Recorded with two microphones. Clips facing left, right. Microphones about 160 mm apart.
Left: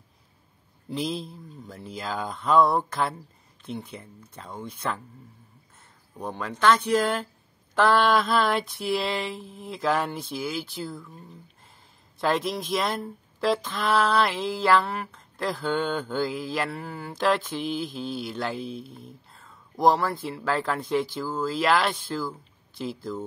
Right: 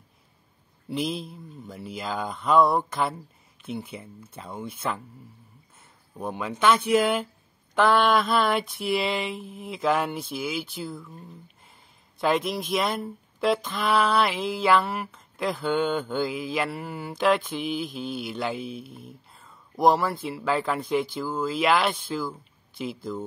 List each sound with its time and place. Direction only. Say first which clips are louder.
0.8 s speech: right 1 dB; centre (ahead or behind)
6.1 s speech: right 2 dB; 5° right (ahead or behind)
12.2 s speech: right 1 dB; centre (ahead or behind)